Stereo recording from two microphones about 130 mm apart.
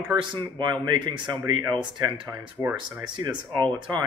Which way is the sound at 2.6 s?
20° right (ahead or behind).